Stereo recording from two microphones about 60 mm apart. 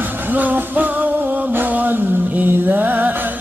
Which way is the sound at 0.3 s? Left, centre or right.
Right.